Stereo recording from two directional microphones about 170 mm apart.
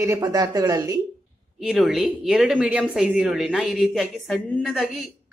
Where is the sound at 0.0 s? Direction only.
20° right (ahead or behind).